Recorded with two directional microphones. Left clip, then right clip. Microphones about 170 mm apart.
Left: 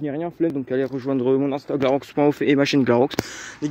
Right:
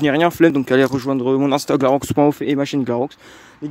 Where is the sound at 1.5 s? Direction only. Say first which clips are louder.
Right 8 dB; 60° right (ahead or behind).